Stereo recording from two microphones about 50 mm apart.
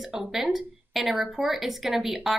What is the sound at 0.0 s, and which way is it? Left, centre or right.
A woman's voice, centre.